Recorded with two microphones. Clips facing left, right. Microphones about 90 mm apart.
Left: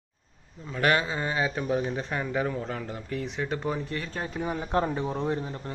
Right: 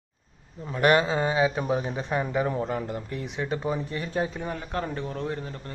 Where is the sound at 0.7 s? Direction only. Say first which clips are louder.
Right 4 dB; 20° right (ahead or behind).